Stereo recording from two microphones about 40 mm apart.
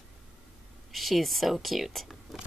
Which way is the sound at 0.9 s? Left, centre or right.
Centre.